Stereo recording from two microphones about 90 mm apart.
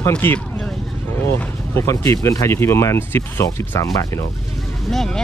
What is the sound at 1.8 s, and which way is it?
Speech, 30° left (ahead or behind).